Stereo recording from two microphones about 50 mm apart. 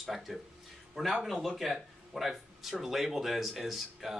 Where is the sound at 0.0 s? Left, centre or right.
Centre.